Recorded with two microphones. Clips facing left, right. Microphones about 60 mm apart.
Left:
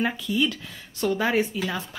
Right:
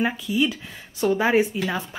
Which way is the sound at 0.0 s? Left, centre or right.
Centre.